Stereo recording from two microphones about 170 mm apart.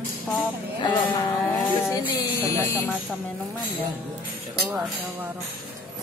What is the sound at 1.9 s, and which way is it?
Music, 20° left (ahead or behind).